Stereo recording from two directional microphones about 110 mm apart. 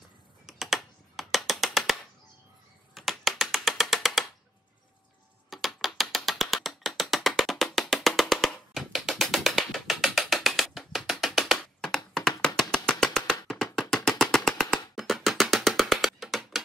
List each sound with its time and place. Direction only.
0.5 s computer keyboard: centre (ahead or behind)
2.9 s music: centre (ahead or behind)
5.5 s ratchet: centre (ahead or behind)
8.7 s music: centre (ahead or behind)